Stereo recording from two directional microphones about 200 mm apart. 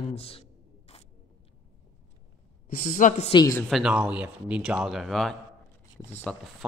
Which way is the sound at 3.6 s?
Centre (ahead or behind).